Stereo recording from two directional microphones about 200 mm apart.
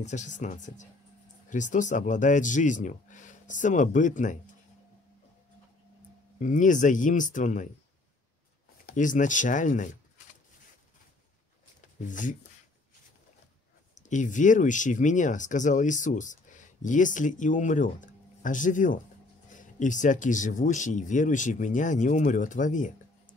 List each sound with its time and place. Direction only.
0.0 s speech: 35° left (ahead or behind)
6.4 s speech: 40° left (ahead or behind)
8.8 s speech: 40° left (ahead or behind)
12.0 s speech: 40° left (ahead or behind)
14.0 s speech: 40° left (ahead or behind)